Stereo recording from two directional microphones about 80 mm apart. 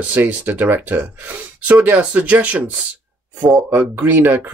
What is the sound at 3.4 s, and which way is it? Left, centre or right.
Speech, right.